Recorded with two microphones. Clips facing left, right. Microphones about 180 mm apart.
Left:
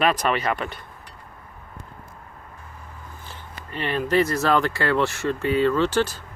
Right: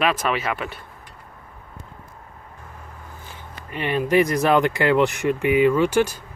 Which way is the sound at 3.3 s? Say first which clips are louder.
Right 1 dB; 10° right (ahead or behind).